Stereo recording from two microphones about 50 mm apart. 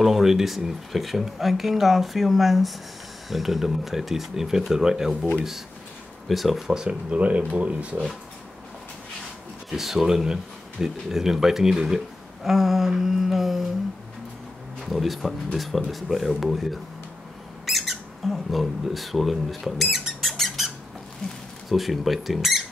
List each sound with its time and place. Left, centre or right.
0.0 s speech: centre
6.2 s speech: centre
6.7 s speech: centre
9.7 s speech: centre
14.9 s speech: centre
17.6 s squawk: centre
21.6 s speech: centre